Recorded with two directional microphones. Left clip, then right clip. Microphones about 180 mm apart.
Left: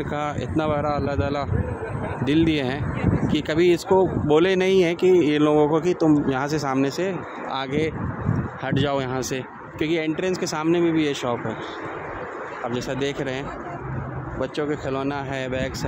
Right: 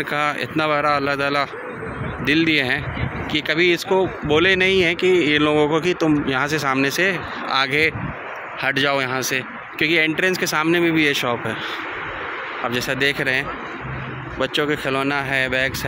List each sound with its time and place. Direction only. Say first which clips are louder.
0.1 s speech: right 5 dB; 15° left (ahead or behind)
2.2 s speech: right 4 dB; 20° left (ahead or behind)
12.7 s speech: right 7 dB; 10° left (ahead or behind)
14.4 s speech: right 6 dB; centre (ahead or behind)